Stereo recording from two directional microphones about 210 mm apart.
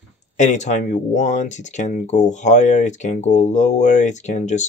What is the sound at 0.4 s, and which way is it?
Speech, 35° left (ahead or behind).